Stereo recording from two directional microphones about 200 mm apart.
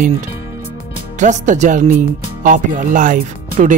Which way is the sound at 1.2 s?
35° right (ahead or behind).